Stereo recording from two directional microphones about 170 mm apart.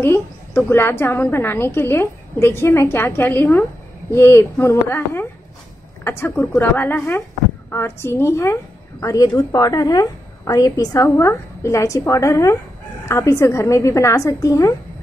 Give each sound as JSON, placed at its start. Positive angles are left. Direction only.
{"t": 0.0, "sound": "a woman's voice", "side_deg": 15}